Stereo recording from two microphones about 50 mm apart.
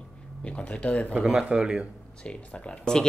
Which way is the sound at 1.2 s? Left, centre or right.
Centre.